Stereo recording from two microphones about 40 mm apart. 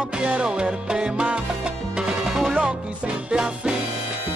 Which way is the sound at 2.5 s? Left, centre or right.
Right.